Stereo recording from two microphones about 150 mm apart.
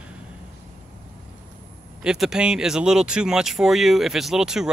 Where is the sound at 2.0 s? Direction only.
5° right (ahead or behind).